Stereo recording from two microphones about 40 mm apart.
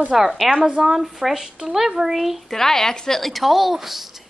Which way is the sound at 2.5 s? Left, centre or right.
Centre.